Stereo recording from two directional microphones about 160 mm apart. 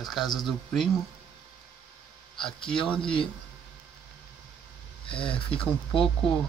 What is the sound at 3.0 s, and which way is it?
Speech, 30° left (ahead or behind).